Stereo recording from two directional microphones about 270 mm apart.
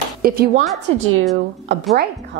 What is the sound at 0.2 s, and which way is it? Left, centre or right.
Speech, right.